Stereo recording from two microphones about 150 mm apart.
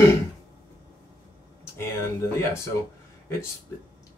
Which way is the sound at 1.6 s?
15° left (ahead or behind).